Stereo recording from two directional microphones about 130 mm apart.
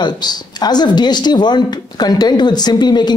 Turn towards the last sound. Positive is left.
turn(degrees=35)  # may be behind; listen again after turning